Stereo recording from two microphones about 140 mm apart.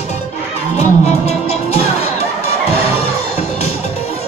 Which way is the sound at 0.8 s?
50° left (ahead or behind).